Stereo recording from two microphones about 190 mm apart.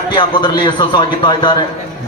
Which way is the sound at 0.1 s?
25° left (ahead or behind).